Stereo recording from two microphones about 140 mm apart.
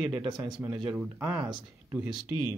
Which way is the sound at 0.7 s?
10° right (ahead or behind).